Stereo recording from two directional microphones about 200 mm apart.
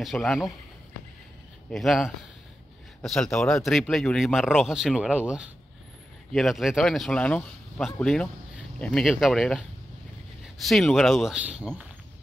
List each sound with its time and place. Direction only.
0.0 s speech: centre (ahead or behind)
1.7 s speech: centre (ahead or behind)